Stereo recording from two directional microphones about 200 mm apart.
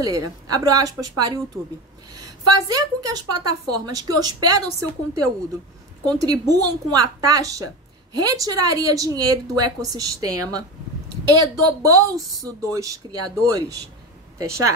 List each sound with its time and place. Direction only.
0.0 s a woman's voice: 20° right (ahead or behind)
2.4 s a woman's voice: 20° right (ahead or behind)